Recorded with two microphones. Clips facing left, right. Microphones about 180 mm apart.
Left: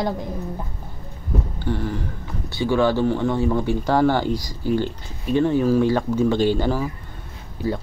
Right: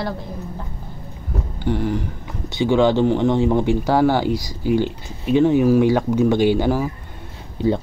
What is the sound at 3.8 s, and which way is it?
Speech, 10° right (ahead or behind).